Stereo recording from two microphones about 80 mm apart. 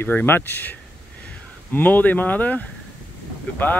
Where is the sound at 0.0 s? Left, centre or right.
Left.